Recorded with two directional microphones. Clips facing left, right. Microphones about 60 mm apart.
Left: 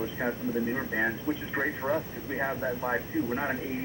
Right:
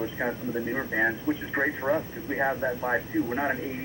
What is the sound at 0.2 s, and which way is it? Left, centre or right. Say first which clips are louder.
Speech: left 1 dB; centre.